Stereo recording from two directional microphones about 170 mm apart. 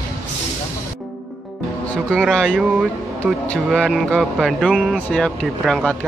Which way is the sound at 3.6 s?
Centre (ahead or behind).